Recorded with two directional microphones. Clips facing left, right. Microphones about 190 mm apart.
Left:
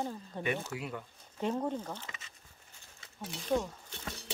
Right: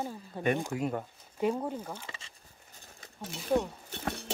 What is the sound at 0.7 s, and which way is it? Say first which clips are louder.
Speech: right 7 dB; 50° right (ahead or behind).